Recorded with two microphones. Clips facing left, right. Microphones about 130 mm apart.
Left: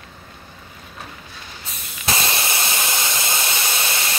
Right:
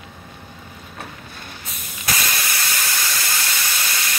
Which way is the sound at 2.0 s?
25° left (ahead or behind).